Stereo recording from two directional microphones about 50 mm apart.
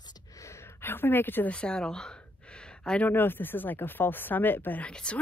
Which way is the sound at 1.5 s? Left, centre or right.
Centre.